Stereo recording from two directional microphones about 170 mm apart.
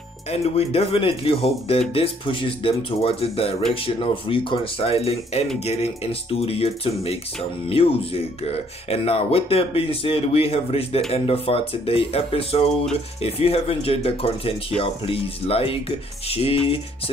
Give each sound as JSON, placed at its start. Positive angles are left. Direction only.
{"t": 0.3, "sound": "speech", "side_deg": 35}